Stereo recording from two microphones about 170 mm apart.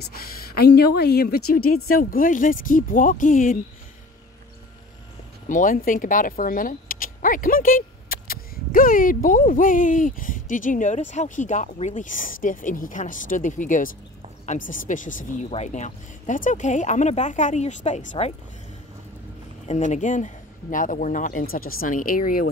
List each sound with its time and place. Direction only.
0.1 s a woman's voice: 65° left (ahead or behind)
5.5 s speech: 50° left (ahead or behind)
19.7 s speech: 45° left (ahead or behind)